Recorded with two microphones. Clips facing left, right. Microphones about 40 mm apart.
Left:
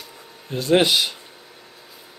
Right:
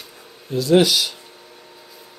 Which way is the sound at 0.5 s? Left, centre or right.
Left.